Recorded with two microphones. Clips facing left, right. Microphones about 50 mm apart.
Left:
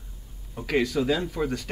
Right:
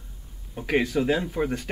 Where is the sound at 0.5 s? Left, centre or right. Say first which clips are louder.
Right 1 dB; right.